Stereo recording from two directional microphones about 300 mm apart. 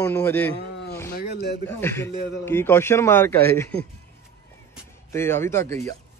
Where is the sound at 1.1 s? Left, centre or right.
Left.